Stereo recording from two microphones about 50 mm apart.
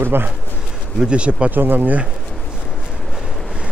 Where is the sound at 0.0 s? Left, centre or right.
Right.